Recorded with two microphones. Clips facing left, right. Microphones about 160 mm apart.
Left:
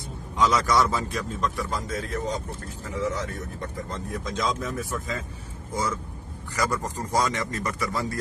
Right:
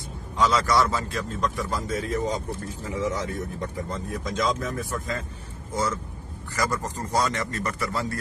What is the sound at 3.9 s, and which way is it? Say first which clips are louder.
Speech: right 1 dB; centre (ahead or behind).